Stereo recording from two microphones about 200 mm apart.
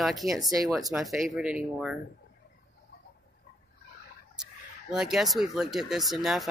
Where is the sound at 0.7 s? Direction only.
Centre (ahead or behind).